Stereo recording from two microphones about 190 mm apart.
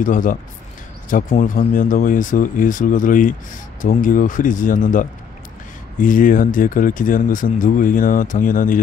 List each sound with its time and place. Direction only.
0.0 s speech: 45° left (ahead or behind)